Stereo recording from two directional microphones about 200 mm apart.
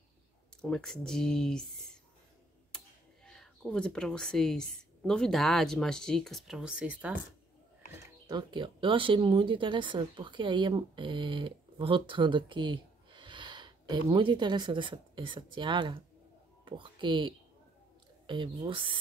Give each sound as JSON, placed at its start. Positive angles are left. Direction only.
{"t": 0.6, "sound": "speech", "side_deg": 5}
{"t": 3.3, "sound": "speech", "side_deg": 5}
{"t": 7.9, "sound": "speech", "side_deg": -20}